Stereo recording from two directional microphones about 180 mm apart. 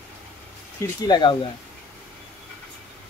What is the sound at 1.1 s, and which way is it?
Speech, 25° left (ahead or behind).